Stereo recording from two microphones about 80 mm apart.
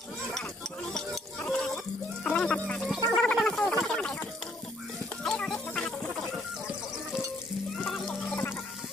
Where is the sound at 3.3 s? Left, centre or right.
Centre.